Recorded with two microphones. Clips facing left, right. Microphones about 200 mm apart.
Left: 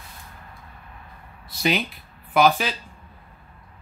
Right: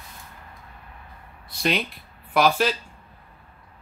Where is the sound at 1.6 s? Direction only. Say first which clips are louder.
Left 1 dB; centre (ahead or behind).